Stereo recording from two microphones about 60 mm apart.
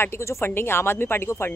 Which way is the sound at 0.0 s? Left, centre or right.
Left.